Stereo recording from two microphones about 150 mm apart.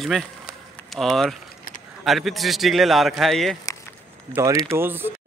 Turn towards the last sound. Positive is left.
turn(degrees=-15)  # may be behind; listen again after turning